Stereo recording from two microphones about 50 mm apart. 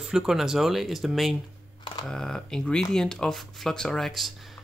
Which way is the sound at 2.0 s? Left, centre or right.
Centre.